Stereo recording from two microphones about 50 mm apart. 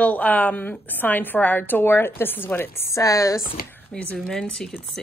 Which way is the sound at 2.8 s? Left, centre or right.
Left.